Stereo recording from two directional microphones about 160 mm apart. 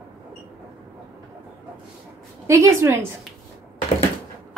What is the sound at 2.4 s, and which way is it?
Speech, 20° right (ahead or behind).